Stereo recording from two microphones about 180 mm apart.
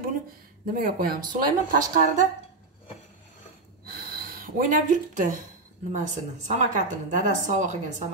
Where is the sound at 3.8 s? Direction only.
55° right (ahead or behind).